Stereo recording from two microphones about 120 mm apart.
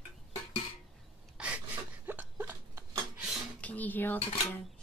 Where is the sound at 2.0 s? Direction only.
15° right (ahead or behind).